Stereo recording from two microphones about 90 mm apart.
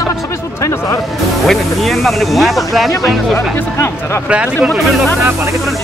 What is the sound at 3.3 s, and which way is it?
Speech, 30° left (ahead or behind).